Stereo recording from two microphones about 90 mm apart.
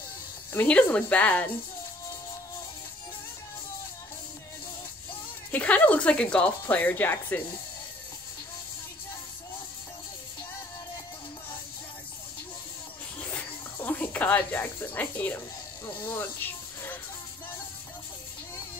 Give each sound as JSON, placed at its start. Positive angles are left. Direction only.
{"t": 0.5, "sound": "speech", "side_deg": 15}
{"t": 5.5, "sound": "speech", "side_deg": 15}
{"t": 13.2, "sound": "snake", "side_deg": 15}
{"t": 16.0, "sound": "a sound", "side_deg": 20}